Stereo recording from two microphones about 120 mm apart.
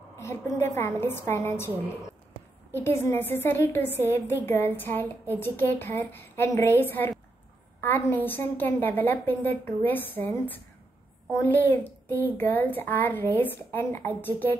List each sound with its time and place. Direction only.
0.2 s a woman's voice: 20° left (ahead or behind)
2.7 s a woman's voice: 20° left (ahead or behind)